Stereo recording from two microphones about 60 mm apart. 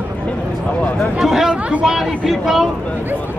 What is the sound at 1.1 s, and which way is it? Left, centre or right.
Speech, centre.